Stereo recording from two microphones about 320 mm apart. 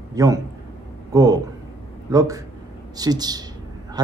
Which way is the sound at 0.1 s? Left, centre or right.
Centre.